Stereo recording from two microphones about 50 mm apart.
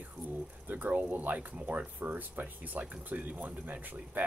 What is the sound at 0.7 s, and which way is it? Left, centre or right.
Speech, right.